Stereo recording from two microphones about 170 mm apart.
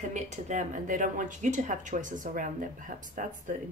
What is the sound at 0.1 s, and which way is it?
Speech, 45° right (ahead or behind).